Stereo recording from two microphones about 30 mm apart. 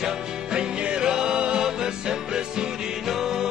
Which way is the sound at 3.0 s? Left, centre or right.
Centre.